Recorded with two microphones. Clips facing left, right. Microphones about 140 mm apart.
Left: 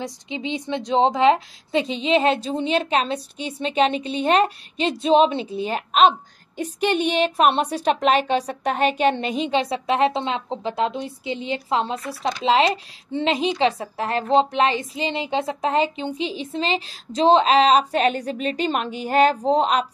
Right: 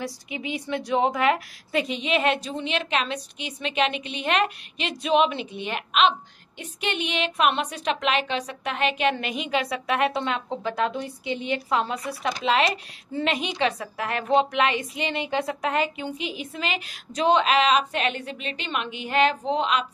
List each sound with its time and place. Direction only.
0.0 s a woman's voice: 25° left (ahead or behind)